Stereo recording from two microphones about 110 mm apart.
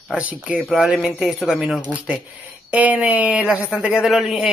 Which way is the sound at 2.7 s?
15° right (ahead or behind).